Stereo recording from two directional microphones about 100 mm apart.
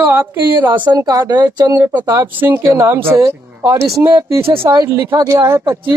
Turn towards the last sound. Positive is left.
turn(degrees=-25)  # may be behind; listen again after turning